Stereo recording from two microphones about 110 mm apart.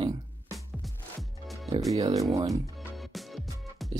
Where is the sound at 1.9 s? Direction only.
35° right (ahead or behind).